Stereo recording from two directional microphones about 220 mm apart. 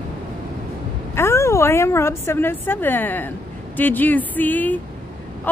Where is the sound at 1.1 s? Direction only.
10° left (ahead or behind).